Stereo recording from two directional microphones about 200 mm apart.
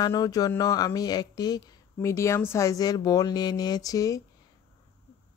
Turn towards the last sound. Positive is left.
turn(degrees=15)  # may be behind; listen again after turning